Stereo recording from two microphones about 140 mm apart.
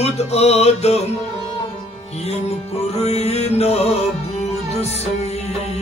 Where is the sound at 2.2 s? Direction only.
50° left (ahead or behind).